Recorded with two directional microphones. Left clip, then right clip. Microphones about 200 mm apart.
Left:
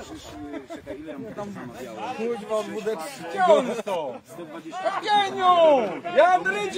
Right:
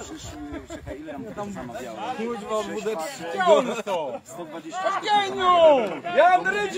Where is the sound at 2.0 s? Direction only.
45° right (ahead or behind).